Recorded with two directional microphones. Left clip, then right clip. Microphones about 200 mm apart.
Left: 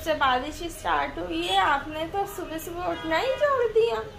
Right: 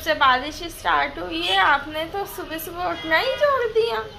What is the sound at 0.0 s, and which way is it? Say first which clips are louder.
A woman's voice: right 5 dB; centre (ahead or behind).